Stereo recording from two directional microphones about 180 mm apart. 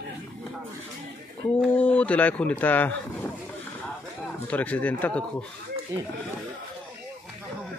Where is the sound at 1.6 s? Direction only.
10° left (ahead or behind).